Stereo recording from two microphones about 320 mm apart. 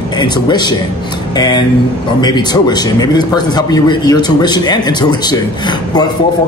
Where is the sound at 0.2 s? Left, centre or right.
Centre.